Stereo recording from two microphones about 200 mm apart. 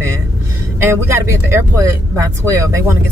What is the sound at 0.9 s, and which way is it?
Speech, 15° right (ahead or behind).